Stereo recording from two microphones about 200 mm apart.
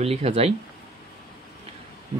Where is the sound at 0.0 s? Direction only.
30° right (ahead or behind).